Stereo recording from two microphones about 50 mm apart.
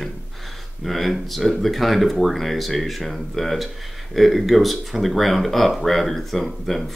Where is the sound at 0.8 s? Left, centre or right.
Centre.